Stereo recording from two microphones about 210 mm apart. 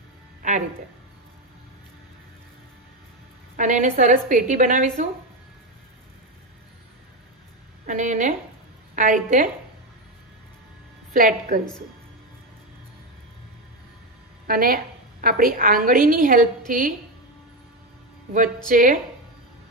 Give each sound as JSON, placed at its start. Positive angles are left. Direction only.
{"t": 0.4, "sound": "music", "side_deg": -35}
{"t": 3.5, "sound": "a woman's voice", "side_deg": -35}
{"t": 7.8, "sound": "a woman's voice", "side_deg": -35}
{"t": 11.1, "sound": "a woman's voice", "side_deg": -40}
{"t": 14.5, "sound": "a woman's voice", "side_deg": -45}
{"t": 18.7, "sound": "a woman's voice", "side_deg": -40}